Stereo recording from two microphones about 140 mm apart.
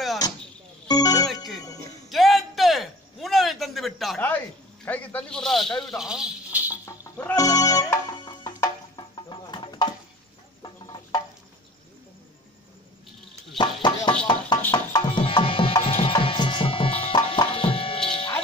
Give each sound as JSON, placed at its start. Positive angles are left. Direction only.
{"t": 0.8, "sound": "music", "side_deg": 25}
{"t": 1.2, "sound": "music", "side_deg": 0}
{"t": 2.0, "sound": "a sound", "side_deg": 0}
{"t": 4.8, "sound": "speech", "side_deg": 10}
{"t": 6.7, "sound": "livestock", "side_deg": 20}
{"t": 7.3, "sound": "music", "side_deg": 25}
{"t": 10.6, "sound": "a sound", "side_deg": 30}
{"t": 13.6, "sound": "a sound", "side_deg": 35}
{"t": 14.6, "sound": "music", "side_deg": 15}
{"t": 15.0, "sound": "music", "side_deg": 40}